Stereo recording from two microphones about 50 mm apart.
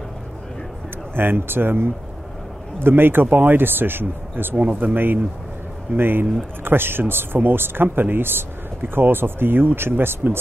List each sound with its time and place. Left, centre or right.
1.1 s speech: right